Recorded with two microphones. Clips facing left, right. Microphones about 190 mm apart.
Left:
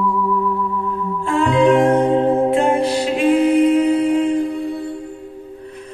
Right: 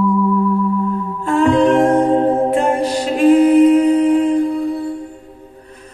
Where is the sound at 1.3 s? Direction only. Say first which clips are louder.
Right 2 dB; 40° right (ahead or behind).